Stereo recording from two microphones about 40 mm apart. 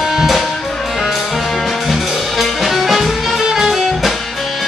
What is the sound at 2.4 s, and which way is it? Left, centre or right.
Music, centre.